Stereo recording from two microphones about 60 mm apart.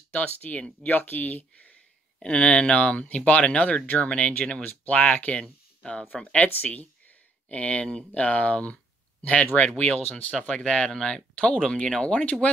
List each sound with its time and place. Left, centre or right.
0.1 s speech: left
2.2 s speech: centre
5.4 s speech: centre